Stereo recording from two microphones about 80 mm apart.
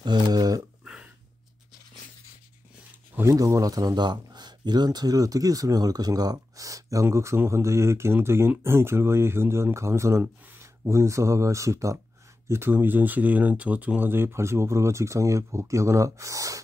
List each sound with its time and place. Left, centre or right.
0.0 s speech: right
0.8 s a sound: centre
3.3 s speech: right
12.4 s speech: right